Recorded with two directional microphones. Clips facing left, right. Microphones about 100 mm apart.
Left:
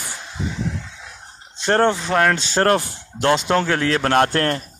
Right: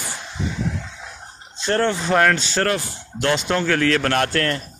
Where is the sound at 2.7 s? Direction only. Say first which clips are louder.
Left 5 dB; 45° left (ahead or behind).